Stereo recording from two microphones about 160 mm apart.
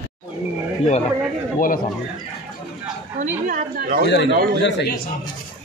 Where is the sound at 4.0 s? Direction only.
90° left.